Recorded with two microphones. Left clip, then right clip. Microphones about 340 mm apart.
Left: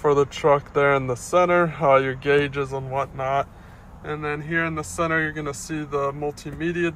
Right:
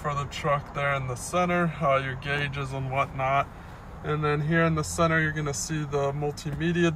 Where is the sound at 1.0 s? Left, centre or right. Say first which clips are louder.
Left 8 dB; right.